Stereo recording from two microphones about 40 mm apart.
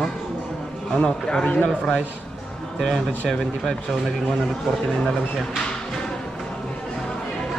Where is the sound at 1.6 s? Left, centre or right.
Centre.